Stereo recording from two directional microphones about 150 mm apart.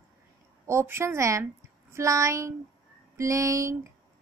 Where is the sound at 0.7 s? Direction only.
15° right (ahead or behind).